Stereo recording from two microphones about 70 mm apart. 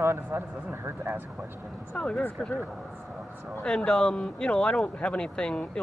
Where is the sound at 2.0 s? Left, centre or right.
Centre.